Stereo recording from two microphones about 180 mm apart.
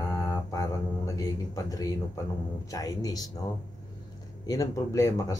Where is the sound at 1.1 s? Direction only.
20° left (ahead or behind).